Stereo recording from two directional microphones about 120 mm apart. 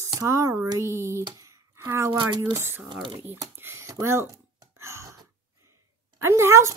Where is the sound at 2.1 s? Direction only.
40° right (ahead or behind).